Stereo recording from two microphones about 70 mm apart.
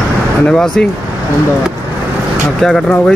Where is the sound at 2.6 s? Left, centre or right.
Centre.